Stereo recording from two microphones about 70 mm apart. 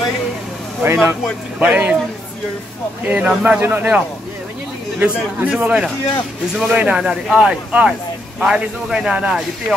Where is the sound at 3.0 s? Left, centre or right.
Right.